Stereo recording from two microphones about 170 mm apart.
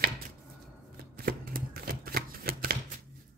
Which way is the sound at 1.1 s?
60° right (ahead or behind).